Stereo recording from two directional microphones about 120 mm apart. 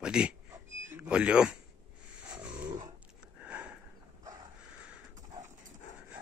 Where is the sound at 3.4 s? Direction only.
10° right (ahead or behind).